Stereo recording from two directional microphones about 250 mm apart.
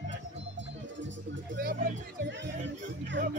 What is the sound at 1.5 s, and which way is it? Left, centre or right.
Music, right.